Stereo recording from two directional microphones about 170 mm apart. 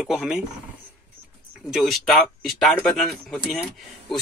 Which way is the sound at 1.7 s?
Centre (ahead or behind).